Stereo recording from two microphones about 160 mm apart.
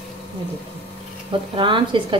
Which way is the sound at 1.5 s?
30° right (ahead or behind).